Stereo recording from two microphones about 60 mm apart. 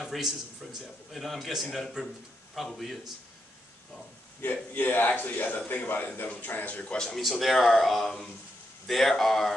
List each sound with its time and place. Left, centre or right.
0.0 s a man's voice: centre
4.4 s speech: left; by 7.2 s centre
7.2 s a man's voice: centre